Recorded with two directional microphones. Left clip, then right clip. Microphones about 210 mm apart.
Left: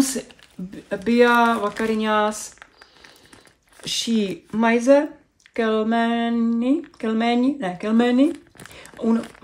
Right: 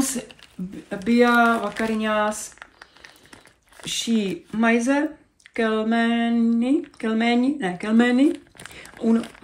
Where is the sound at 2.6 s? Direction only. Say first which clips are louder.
Right 2 dB; centre (ahead or behind).